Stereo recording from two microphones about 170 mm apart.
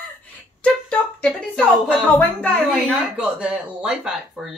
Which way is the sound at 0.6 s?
5° left (ahead or behind).